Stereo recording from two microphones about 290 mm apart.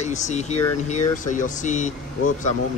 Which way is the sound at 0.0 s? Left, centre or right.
Left.